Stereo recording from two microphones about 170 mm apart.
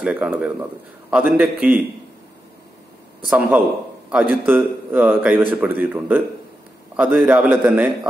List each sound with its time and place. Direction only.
0.0 s a man's voice: 10° right (ahead or behind)
3.3 s a man's voice: 5° right (ahead or behind)